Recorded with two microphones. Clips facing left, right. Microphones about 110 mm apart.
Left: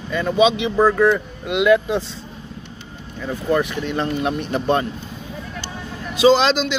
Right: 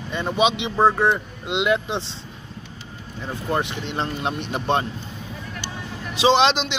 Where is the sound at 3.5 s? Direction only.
25° right (ahead or behind).